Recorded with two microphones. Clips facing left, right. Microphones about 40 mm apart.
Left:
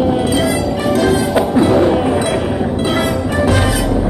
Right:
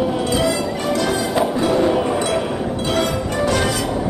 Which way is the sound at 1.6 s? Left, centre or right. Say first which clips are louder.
Left 7 dB; left.